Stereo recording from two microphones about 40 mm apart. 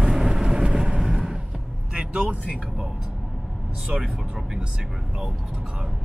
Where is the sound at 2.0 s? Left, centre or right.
Right.